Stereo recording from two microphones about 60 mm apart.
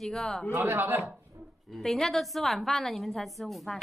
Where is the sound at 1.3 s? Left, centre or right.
Right.